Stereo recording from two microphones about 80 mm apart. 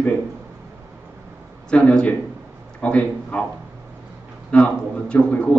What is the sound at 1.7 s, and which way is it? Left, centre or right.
A man's voice, centre.